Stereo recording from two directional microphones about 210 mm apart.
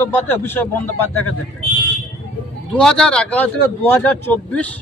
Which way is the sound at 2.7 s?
5° left (ahead or behind).